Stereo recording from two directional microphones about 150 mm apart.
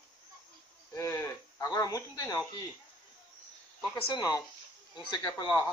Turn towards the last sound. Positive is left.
turn(degrees=25)  # may be behind; listen again after turning